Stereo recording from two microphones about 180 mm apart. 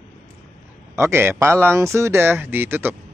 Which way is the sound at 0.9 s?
15° right (ahead or behind).